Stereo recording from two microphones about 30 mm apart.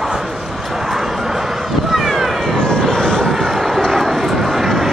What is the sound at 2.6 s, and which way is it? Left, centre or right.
Vehicle, left.